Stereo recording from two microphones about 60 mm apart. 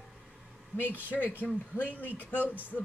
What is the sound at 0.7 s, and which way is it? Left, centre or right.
Speech, left.